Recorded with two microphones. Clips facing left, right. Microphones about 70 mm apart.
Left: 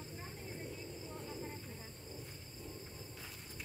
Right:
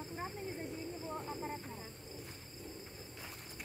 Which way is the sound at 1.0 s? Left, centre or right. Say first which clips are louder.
Right 4 dB; right.